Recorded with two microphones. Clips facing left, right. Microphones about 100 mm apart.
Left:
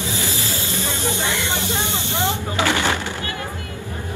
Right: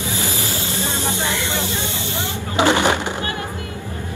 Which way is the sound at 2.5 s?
20° right (ahead or behind).